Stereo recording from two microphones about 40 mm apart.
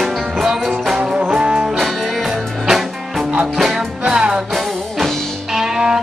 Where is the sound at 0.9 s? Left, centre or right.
Right.